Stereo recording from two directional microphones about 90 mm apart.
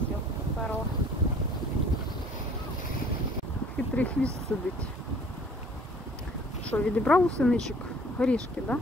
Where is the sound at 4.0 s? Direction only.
15° left (ahead or behind).